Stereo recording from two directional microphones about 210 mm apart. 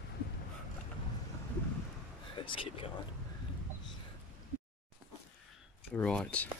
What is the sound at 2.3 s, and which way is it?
Speech, 25° left (ahead or behind).